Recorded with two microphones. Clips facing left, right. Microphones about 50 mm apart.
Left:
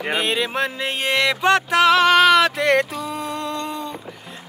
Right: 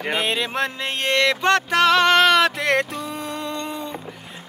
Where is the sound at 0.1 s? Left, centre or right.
Centre.